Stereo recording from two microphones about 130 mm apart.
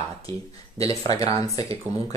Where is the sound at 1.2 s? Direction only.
50° right (ahead or behind).